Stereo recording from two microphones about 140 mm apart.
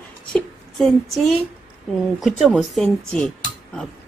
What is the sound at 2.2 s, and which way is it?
Speech, centre (ahead or behind).